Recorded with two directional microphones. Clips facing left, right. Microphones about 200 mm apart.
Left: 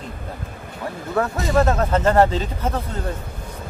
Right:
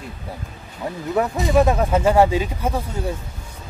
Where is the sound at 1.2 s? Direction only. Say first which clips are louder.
Right 2 dB; 20° right (ahead or behind).